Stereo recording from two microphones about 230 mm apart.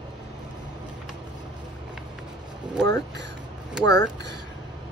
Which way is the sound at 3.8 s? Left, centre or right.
Centre.